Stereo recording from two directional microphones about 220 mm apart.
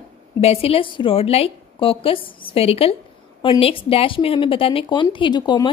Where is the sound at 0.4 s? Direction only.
25° left (ahead or behind).